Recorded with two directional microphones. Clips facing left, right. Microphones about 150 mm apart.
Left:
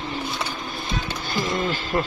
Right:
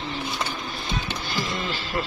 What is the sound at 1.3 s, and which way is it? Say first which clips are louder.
Music: left 6 dB; 50° left (ahead or behind).